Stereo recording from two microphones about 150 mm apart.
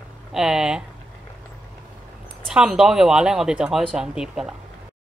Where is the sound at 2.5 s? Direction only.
5° right (ahead or behind).